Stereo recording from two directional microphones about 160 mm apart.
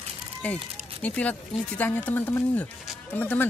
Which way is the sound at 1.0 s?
10° left (ahead or behind).